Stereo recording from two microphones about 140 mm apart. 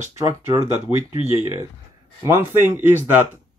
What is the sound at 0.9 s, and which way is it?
Speech, 40° left (ahead or behind).